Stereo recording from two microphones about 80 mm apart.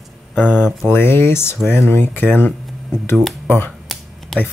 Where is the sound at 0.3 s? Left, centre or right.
Centre.